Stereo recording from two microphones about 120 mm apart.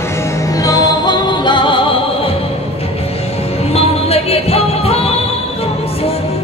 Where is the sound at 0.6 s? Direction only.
30° left (ahead or behind).